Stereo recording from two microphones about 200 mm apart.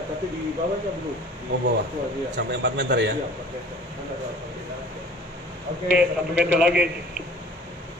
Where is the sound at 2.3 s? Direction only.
65° right (ahead or behind).